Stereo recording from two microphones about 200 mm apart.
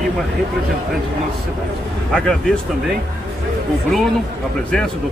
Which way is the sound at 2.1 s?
5° left (ahead or behind).